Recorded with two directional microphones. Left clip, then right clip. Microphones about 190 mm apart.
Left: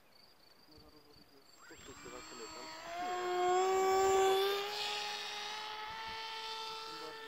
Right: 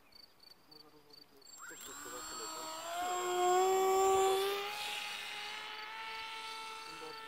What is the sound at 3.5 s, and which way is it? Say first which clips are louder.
Vehicle: right 2 dB; 15° right (ahead or behind).